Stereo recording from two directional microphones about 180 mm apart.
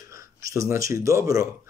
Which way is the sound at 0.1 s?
15° right (ahead or behind).